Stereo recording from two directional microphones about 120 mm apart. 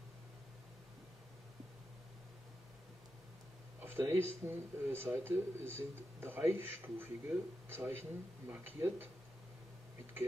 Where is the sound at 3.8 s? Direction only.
20° right (ahead or behind).